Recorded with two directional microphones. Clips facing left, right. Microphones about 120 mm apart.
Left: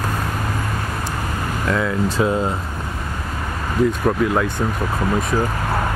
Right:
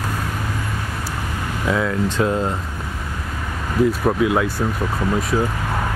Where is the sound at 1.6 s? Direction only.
Centre (ahead or behind).